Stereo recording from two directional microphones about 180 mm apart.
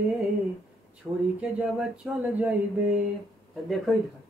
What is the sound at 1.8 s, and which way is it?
Speech, 5° right (ahead or behind).